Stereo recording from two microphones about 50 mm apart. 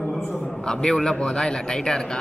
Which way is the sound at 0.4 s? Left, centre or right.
Centre.